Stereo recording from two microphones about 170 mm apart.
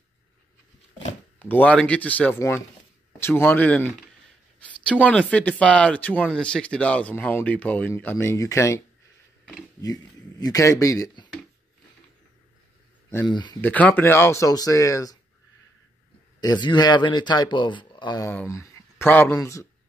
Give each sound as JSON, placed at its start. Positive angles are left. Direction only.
{"t": 1.4, "sound": "speech", "side_deg": 10}
{"t": 10.4, "sound": "speech", "side_deg": 20}
{"t": 13.3, "sound": "speech", "side_deg": 25}
{"t": 13.6, "sound": "speech", "side_deg": 10}
{"t": 16.3, "sound": "speech", "side_deg": 25}
{"t": 18.3, "sound": "speech", "side_deg": 15}